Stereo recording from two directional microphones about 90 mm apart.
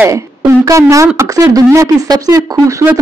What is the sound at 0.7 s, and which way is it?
Speech, 35° right (ahead or behind).